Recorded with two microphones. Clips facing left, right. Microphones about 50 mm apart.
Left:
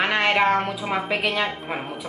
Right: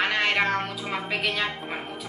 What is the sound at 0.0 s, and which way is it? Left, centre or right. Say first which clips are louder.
A woman's voice: left 4 dB; centre.